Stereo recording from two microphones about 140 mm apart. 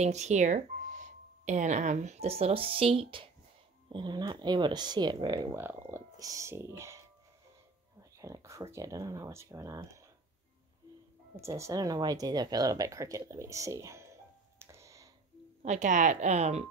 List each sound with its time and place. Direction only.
0.0 s speech: 55° right (ahead or behind); by 5.5 s 30° right (ahead or behind)
5.5 s speech: 15° right (ahead or behind)
8.0 s whispering: 25° right (ahead or behind)
8.7 s speech: 25° right (ahead or behind)
11.4 s speech: 20° right (ahead or behind)
13.2 s a sound: 20° right (ahead or behind)
15.6 s speech: 60° right (ahead or behind)